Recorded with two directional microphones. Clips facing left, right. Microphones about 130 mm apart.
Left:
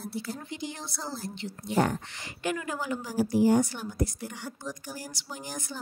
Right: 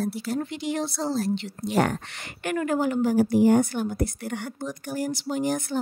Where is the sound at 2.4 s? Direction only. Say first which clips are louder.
Right 7 dB; 55° right (ahead or behind).